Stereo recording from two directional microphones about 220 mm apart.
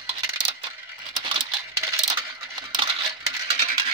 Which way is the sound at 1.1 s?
20° right (ahead or behind).